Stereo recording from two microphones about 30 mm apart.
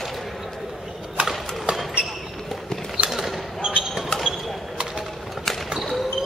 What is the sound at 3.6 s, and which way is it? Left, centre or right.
Basketball bounce, right.